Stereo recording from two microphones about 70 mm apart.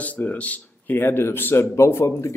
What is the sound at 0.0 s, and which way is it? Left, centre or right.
Speech, left.